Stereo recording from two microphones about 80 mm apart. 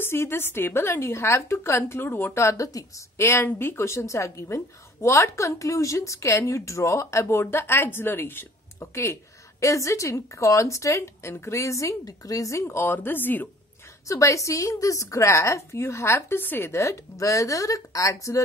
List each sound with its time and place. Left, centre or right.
0.0 s a woman's voice: left
8.7 s a woman's voice: left
14.0 s a woman's voice: left